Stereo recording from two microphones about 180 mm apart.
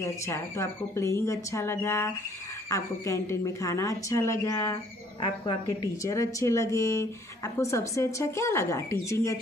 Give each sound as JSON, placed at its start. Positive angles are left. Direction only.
{"t": 0.0, "sound": "a woman's voice", "side_deg": 15}